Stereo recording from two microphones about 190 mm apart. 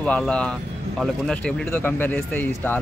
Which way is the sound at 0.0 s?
5° left (ahead or behind).